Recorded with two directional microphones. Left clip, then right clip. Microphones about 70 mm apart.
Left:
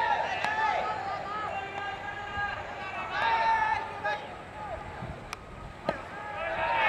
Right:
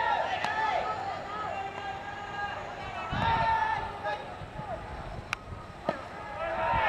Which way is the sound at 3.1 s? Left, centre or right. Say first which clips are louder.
Left 1 dB; centre.